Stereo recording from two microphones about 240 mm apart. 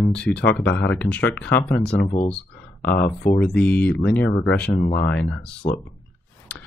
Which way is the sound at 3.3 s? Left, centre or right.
Centre.